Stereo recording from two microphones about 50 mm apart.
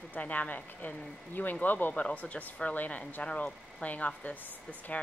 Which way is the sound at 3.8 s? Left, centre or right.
Left.